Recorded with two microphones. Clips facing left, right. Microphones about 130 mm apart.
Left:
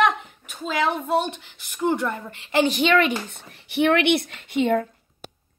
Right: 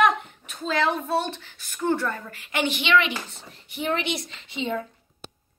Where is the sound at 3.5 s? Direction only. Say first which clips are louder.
Left 8 dB; 70° left (ahead or behind); by 4.9 s 55° left (ahead or behind).